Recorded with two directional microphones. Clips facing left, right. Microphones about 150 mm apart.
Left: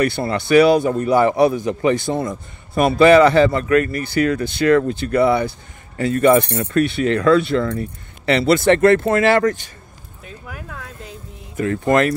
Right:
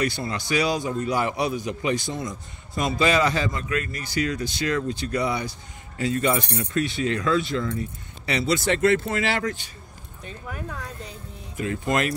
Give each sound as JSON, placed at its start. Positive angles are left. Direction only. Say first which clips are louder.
{"t": 0.0, "sound": "a man's voice", "louder": "left 7 dB", "side_deg": 60}
{"t": 10.2, "sound": "speech", "louder": "even", "side_deg": 5}
{"t": 11.5, "sound": "a man's voice", "louder": "left 8 dB", "side_deg": 60}